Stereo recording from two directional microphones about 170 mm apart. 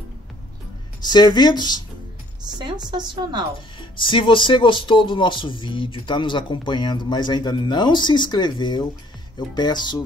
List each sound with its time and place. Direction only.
1.0 s speech: 25° left (ahead or behind)
2.4 s a woman's voice: 25° right (ahead or behind)
3.9 s speech: 30° left (ahead or behind)